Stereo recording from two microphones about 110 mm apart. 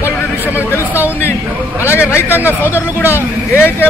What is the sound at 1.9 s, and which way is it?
Speech, 20° left (ahead or behind).